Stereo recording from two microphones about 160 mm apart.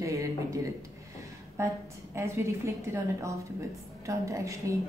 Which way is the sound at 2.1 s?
15° right (ahead or behind).